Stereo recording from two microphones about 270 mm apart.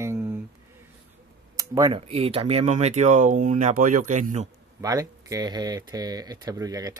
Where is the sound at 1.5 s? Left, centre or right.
Centre.